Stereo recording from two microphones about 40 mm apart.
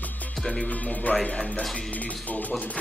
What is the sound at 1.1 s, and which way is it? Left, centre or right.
Speech, left.